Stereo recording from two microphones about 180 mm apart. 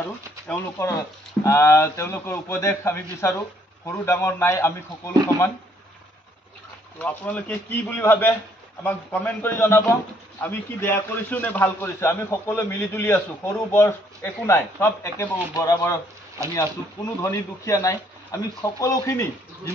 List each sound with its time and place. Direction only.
0.5 s a man's voice: 15° left (ahead or behind)
7.0 s a man's voice: 10° left (ahead or behind)
17.2 s a man's voice: 15° left (ahead or behind)